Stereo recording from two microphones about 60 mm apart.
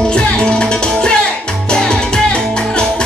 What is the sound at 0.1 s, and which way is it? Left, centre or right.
Music, centre.